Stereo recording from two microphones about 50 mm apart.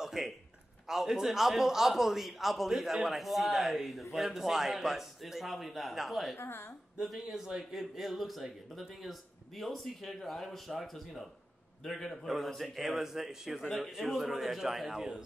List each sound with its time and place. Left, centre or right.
0.0 s a sound: centre
0.8 s a man's voice: centre
6.3 s speech: left
7.0 s a man's voice: centre